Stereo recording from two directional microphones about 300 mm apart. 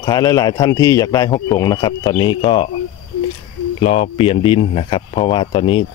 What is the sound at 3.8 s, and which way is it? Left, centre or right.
Speech, left.